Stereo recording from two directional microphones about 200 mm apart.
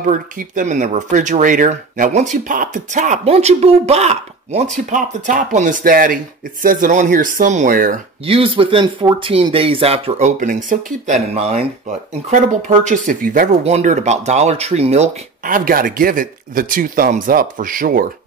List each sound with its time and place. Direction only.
0.0 s speech: 40° right (ahead or behind)
8.3 s speech: 25° right (ahead or behind); by 18.0 s 45° right (ahead or behind)